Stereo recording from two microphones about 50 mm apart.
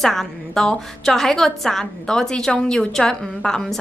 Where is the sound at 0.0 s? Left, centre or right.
Centre.